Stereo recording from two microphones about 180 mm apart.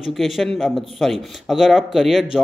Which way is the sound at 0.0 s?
Centre (ahead or behind).